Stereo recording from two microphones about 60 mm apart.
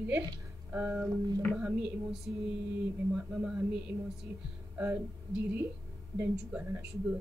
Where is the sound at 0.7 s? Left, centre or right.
Right.